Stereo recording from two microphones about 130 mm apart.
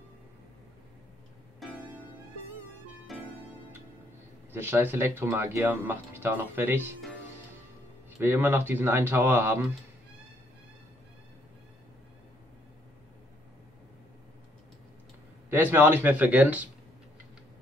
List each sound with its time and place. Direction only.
1.6 s music: centre (ahead or behind)
3.1 s music: centre (ahead or behind)
4.5 s speech: 15° right (ahead or behind)
8.2 s speech: 15° right (ahead or behind)
15.5 s speech: 15° right (ahead or behind)